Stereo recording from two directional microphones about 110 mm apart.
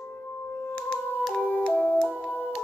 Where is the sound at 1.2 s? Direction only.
10° left (ahead or behind).